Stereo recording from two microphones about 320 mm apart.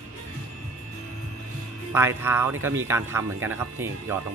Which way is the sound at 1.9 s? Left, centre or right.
Centre.